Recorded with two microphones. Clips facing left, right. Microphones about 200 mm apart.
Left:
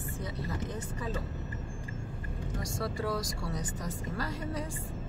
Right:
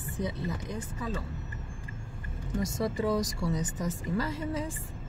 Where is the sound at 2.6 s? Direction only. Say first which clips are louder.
Right 5 dB; 20° right (ahead or behind).